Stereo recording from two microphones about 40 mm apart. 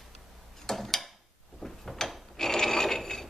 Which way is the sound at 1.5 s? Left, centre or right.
Centre.